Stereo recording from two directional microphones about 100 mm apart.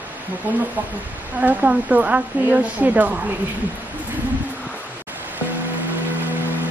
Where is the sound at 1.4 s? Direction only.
15° right (ahead or behind).